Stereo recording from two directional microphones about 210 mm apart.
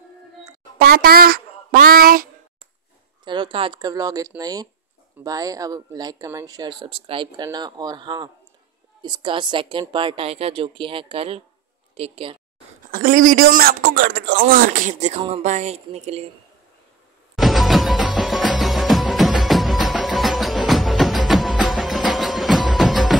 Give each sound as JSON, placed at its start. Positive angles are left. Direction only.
{"t": 0.7, "sound": "speech", "side_deg": -45}
{"t": 3.3, "sound": "speech", "side_deg": -20}
{"t": 12.9, "sound": "speech", "side_deg": -40}
{"t": 17.4, "sound": "music", "side_deg": 0}